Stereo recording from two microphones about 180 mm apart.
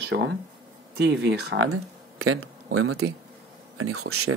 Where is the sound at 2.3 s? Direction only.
90° right.